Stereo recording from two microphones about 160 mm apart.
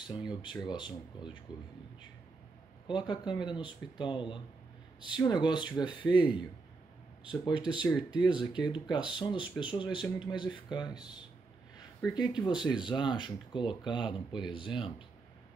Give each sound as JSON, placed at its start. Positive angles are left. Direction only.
{"t": 0.0, "sound": "speech", "side_deg": 30}
{"t": 2.9, "sound": "speech", "side_deg": 30}
{"t": 12.1, "sound": "speech", "side_deg": 25}